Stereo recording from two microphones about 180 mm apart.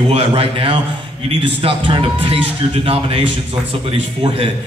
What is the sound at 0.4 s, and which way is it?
A man's voice, 30° right (ahead or behind).